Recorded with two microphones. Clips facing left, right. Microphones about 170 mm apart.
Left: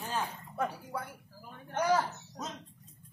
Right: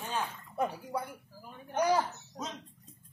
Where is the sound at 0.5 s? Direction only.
20° right (ahead or behind).